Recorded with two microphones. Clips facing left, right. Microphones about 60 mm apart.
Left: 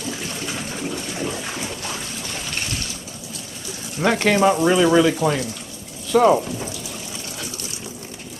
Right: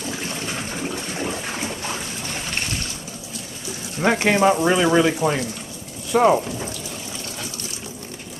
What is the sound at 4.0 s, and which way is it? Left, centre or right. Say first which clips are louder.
Speech: even; centre.